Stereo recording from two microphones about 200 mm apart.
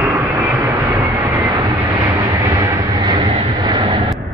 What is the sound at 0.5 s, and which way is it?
Vehicle, 15° right (ahead or behind).